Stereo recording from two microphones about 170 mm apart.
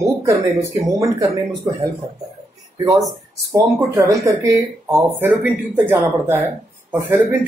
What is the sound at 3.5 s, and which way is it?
Speech, 20° right (ahead or behind).